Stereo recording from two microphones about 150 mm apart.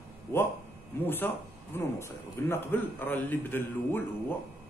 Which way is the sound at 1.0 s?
15° left (ahead or behind).